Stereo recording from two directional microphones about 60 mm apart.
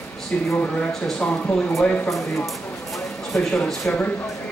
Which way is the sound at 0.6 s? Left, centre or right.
Left.